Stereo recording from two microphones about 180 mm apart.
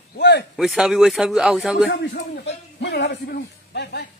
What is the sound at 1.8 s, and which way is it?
A man's voice, 75° left (ahead or behind).